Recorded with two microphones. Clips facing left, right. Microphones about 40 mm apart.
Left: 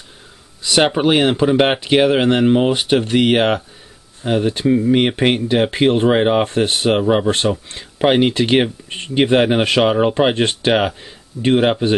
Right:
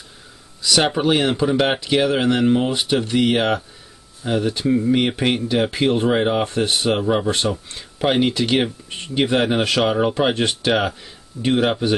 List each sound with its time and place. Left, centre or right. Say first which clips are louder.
0.6 s speech: left 3 dB; left